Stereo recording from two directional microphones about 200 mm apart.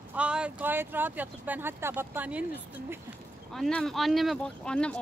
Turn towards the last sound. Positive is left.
turn(degrees=5)  # may be behind; listen again after turning